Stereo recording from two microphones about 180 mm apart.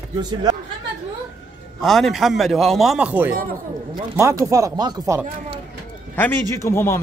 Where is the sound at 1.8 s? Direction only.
Centre (ahead or behind); by 5.2 s 20° right (ahead or behind).